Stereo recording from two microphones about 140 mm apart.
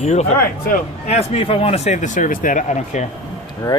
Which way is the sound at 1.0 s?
50° left (ahead or behind).